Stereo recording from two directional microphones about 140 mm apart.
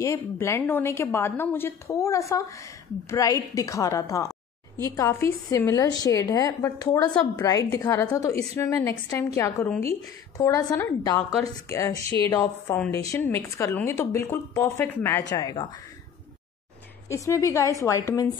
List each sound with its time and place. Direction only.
0.0 s a woman's voice: 20° left (ahead or behind)
15.2 s a woman's voice: 25° left (ahead or behind)
17.1 s a woman's voice: 20° left (ahead or behind)